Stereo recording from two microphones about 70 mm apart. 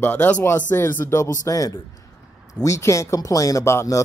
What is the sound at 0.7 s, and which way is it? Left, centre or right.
Speech, left.